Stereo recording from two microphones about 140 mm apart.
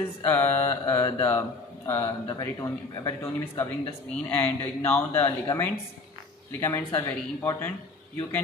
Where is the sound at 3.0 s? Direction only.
20° left (ahead or behind).